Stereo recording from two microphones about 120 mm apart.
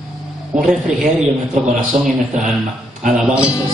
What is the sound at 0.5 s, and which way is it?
Speech, 5° right (ahead or behind).